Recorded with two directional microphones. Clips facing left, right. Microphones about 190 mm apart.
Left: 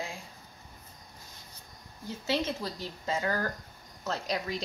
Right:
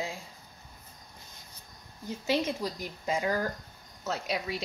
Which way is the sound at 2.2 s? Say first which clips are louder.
Right 2 dB; 15° right (ahead or behind).